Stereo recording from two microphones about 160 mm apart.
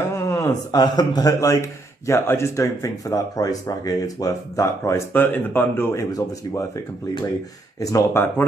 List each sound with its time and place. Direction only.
0.1 s speech: 15° left (ahead or behind)
7.8 s speech: 20° left (ahead or behind)